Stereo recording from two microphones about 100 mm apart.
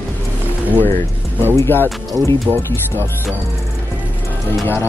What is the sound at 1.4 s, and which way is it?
Speech, 20° left (ahead or behind).